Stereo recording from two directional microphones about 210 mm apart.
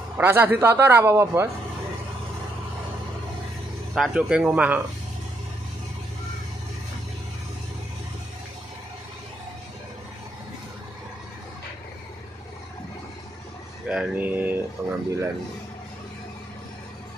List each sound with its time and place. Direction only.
0.2 s a man's voice: 10° right (ahead or behind)
3.9 s speech: 5° right (ahead or behind)
13.8 s a man's voice: 5° right (ahead or behind)